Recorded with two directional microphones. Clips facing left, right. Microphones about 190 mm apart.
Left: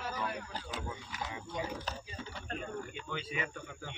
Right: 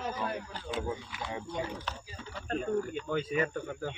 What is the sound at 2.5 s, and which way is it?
A man's voice, 40° right (ahead or behind).